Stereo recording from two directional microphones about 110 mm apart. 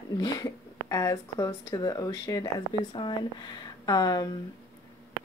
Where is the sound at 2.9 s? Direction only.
45° left (ahead or behind).